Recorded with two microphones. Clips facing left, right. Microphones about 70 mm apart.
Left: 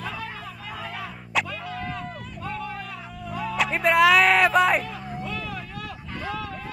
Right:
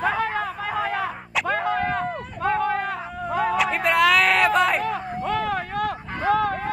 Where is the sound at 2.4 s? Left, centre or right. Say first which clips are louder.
Right 11 dB; right.